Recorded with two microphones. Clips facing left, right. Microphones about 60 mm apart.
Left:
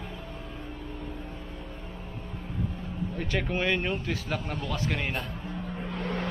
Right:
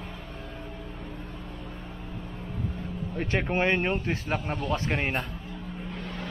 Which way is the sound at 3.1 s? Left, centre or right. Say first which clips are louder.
Right 4 dB; right.